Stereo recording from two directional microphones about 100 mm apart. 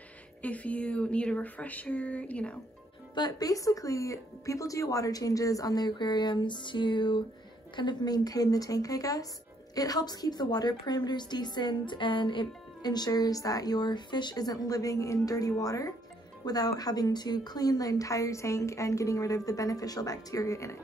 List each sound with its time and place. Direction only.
0.4 s speech: 15° left (ahead or behind)
3.2 s a woman's voice: 40° left (ahead or behind)